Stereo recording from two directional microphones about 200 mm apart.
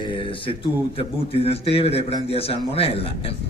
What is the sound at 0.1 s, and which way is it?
Speech, 25° left (ahead or behind).